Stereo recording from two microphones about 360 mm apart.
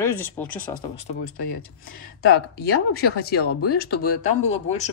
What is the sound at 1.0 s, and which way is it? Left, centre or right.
Speech, left.